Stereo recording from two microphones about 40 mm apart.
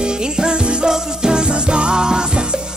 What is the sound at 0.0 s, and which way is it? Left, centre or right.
Music, right.